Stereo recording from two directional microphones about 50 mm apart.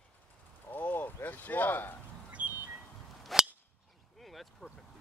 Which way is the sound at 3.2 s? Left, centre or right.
Centre.